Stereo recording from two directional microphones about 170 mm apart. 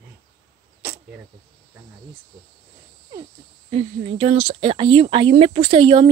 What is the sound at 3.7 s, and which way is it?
Speech, 35° right (ahead or behind).